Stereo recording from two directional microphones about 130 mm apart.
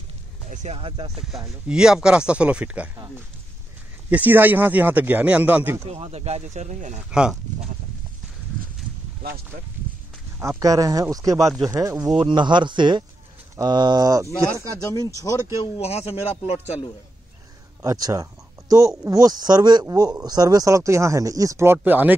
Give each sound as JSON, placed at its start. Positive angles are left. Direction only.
{"t": 0.5, "sound": "speech", "side_deg": -70}
{"t": 0.7, "sound": "speech", "side_deg": -45}
{"t": 1.7, "sound": "speech", "side_deg": -5}
{"t": 4.1, "sound": "speech", "side_deg": -15}
{"t": 5.9, "sound": "speech", "side_deg": -50}
{"t": 7.1, "sound": "speech", "side_deg": -5}
{"t": 10.4, "sound": "speech", "side_deg": -25}
{"t": 11.3, "sound": "speech", "side_deg": 0}
{"t": 11.6, "sound": "speech", "side_deg": -25}
{"t": 12.2, "sound": "speech", "side_deg": -35}
{"t": 15.8, "sound": "a man's voice", "side_deg": 50}
{"t": 17.8, "sound": "speech", "side_deg": -30}
{"t": 21.7, "sound": "speech", "side_deg": -10}